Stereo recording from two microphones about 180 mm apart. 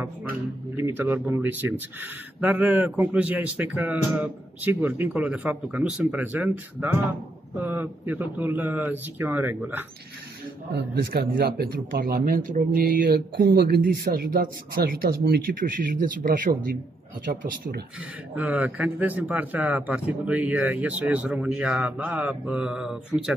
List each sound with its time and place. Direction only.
0.7 s speech: 10° right (ahead or behind)
7.6 s speech: 10° right (ahead or behind)
10.7 s speech: 60° right (ahead or behind)
18.3 s speech: 10° right (ahead or behind)